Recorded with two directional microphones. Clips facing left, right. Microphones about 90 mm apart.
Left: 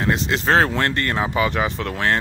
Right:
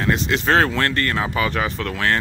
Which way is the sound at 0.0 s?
25° left (ahead or behind).